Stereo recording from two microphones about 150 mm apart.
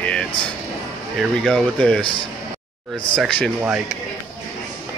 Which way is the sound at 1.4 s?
5° left (ahead or behind).